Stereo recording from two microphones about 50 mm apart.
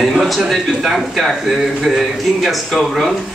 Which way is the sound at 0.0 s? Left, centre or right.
Centre.